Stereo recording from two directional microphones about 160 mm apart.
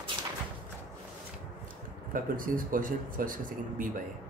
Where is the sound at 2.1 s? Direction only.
60° right (ahead or behind).